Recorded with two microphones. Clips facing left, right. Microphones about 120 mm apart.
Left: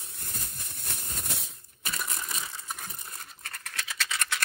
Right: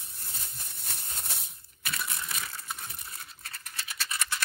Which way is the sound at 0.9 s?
60° left (ahead or behind).